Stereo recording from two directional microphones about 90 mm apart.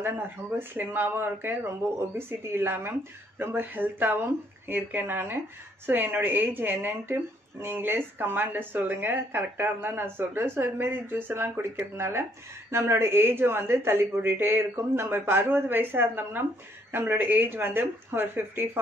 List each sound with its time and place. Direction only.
0.0 s speech: 25° right (ahead or behind)